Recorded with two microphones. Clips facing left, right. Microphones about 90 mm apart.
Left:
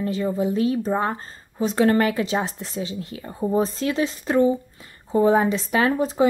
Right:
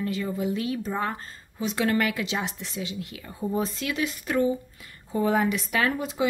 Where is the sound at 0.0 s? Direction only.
30° left (ahead or behind).